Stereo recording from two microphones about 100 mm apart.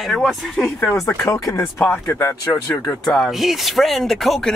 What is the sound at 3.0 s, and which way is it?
Speech, 5° left (ahead or behind).